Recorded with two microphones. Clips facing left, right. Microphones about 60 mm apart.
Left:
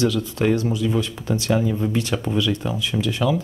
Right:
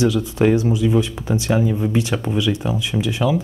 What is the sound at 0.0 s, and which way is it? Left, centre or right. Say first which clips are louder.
Speech: right 4 dB; centre.